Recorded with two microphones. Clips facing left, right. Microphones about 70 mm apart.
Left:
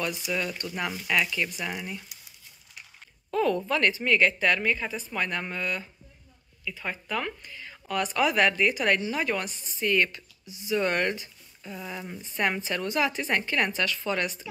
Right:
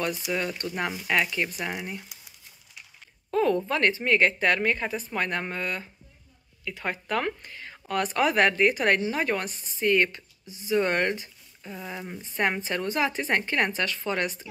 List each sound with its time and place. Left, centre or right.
0.3 s speech: right
3.3 s speech: right
6.6 s speech: right
9.8 s speech: right
10.8 s speech: right
11.6 s speech: centre
12.2 s speech: right